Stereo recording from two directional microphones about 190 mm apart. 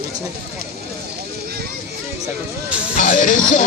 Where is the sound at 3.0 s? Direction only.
40° left (ahead or behind).